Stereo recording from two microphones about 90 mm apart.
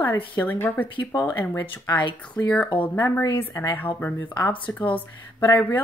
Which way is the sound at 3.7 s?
20° left (ahead or behind).